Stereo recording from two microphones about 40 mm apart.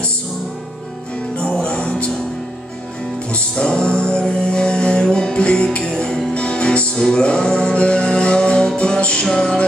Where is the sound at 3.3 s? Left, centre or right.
Left.